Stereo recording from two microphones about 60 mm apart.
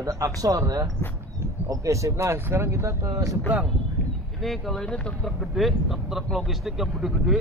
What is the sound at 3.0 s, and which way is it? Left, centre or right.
Speech, right.